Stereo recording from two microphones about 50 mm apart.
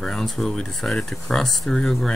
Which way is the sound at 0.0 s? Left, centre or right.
Centre.